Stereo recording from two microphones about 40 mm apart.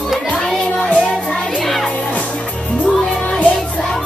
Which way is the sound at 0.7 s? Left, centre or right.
Left.